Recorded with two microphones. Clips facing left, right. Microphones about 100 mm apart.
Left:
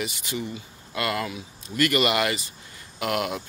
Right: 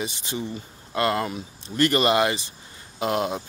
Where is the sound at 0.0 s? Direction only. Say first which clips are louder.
Right 1 dB; 25° right (ahead or behind).